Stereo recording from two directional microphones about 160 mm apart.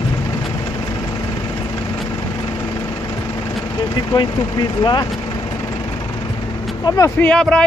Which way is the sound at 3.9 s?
30° left (ahead or behind).